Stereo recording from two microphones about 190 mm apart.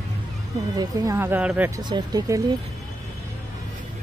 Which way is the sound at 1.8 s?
20° right (ahead or behind).